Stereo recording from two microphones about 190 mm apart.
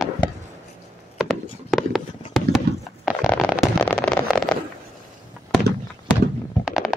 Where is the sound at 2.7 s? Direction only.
60° right (ahead or behind).